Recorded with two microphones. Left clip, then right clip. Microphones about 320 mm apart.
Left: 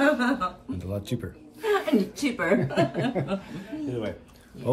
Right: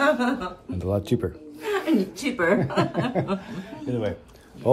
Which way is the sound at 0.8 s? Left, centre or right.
Centre.